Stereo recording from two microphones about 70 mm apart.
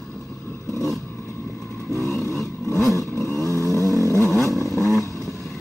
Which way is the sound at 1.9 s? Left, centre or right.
Left.